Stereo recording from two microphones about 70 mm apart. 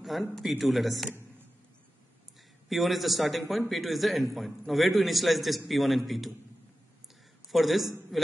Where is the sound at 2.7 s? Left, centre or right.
Centre.